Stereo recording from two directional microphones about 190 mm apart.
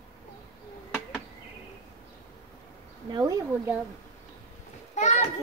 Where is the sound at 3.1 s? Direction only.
20° right (ahead or behind).